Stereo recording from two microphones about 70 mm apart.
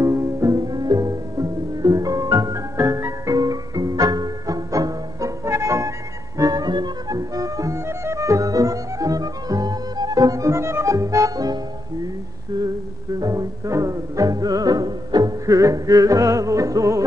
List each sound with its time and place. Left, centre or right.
0.0 s music: right
0.6 s music: right
3.3 s music: right
13.2 s music: right
13.7 s music: right